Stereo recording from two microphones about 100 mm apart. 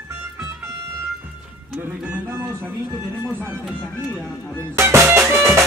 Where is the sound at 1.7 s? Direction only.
25° right (ahead or behind).